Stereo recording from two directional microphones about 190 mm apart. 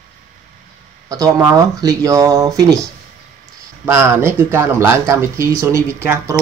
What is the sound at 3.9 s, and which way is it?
Speech, 10° right (ahead or behind).